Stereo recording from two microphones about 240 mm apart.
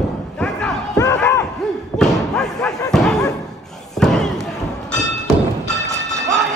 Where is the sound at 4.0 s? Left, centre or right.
Centre.